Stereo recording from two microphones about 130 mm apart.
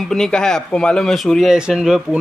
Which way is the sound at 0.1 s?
5° left (ahead or behind).